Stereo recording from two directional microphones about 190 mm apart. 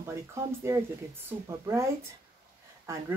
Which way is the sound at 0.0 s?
15° right (ahead or behind).